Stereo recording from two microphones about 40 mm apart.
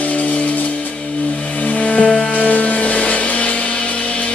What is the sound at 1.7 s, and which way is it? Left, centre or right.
Music, left.